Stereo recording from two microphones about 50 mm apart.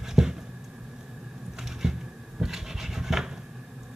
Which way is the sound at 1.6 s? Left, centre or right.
Centre.